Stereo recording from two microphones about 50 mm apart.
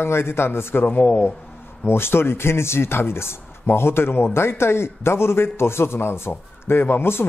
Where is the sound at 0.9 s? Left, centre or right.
Left.